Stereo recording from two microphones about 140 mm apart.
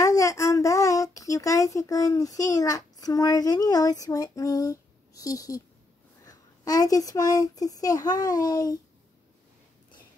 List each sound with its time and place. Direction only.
0.0 s speech: 25° left (ahead or behind)